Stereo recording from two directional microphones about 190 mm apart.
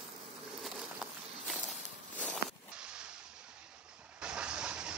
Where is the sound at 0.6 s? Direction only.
Centre (ahead or behind).